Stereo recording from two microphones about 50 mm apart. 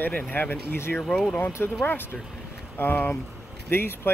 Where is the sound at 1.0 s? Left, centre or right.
Centre.